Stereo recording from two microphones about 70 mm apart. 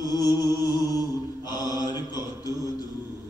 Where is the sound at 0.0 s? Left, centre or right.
Left.